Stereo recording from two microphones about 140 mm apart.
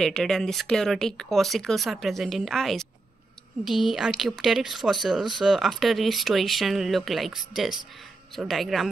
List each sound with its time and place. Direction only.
0.0 s speech: 5° left (ahead or behind)